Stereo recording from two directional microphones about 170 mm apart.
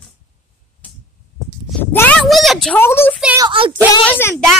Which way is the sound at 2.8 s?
15° left (ahead or behind).